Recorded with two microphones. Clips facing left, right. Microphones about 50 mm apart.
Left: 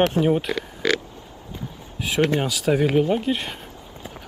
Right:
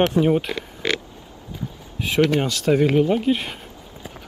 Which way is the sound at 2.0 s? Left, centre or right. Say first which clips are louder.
Right 2 dB; centre.